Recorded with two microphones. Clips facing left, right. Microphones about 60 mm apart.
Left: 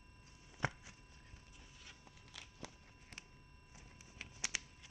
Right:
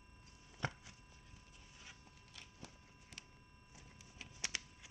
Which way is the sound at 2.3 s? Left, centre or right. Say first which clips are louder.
Left 3 dB; left.